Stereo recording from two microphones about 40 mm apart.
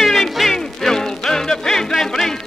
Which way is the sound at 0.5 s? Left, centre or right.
Centre.